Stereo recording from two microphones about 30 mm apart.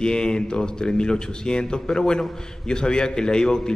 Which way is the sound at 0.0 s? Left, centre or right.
Left.